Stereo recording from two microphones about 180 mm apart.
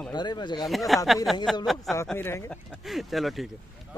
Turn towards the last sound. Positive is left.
turn(degrees=0)  # may be behind; listen again after turning